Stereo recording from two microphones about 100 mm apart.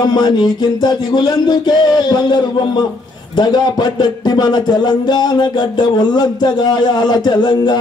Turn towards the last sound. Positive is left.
turn(degrees=45)  # may be behind; listen again after turning